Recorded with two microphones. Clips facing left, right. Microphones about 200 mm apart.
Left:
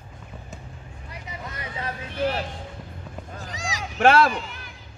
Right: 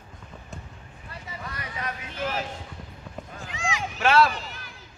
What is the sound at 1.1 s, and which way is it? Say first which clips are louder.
Vehicle: left 1 dB; 20° left (ahead or behind).